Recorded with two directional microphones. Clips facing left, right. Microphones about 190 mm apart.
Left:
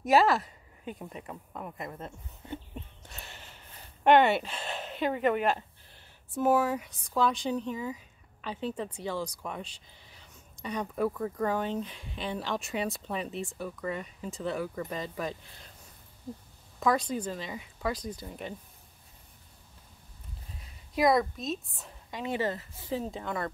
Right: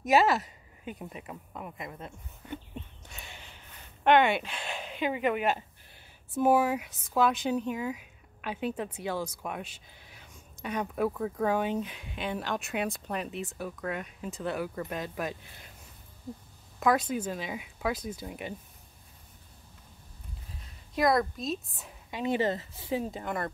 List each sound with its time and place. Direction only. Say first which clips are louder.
0.1 s speech: left 1 dB; 5° right (ahead or behind)
2.4 s chicken: even; 25° left (ahead or behind)
3.1 s a sound: even; centre (ahead or behind)
4.0 s speech: left 1 dB; 5° left (ahead or behind)
16.8 s speech: right 1 dB; 5° right (ahead or behind)
20.9 s a woman's voice: left 1 dB; 5° left (ahead or behind)
22.2 s speech: right 3 dB; 20° right (ahead or behind)
23.1 s speech: right 1 dB; 5° right (ahead or behind)